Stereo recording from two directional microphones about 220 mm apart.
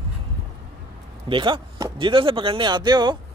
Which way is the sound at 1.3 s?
20° right (ahead or behind).